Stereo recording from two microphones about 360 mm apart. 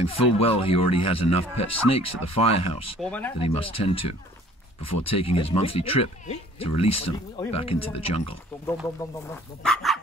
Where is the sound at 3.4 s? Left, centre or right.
Centre.